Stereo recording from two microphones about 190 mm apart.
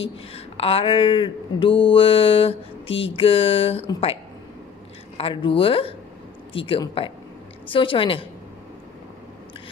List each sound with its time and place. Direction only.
0.3 s mantra: 30° left (ahead or behind)